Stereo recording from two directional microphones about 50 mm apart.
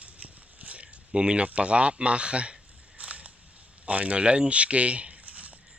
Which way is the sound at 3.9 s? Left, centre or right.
Right.